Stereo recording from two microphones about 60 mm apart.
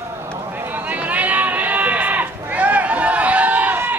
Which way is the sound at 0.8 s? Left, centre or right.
Right.